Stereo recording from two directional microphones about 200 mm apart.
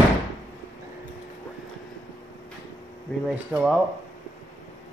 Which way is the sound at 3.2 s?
5° right (ahead or behind).